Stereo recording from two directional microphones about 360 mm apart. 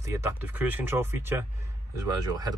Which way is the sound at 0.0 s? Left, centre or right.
Centre.